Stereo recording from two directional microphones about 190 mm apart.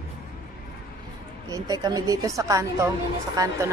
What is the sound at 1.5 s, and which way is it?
A woman's voice, 20° right (ahead or behind).